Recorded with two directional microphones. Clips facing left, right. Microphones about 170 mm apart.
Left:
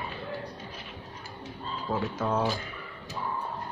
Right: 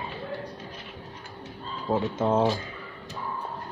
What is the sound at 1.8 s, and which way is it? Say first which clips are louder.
Speech: right 5 dB; 25° right (ahead or behind).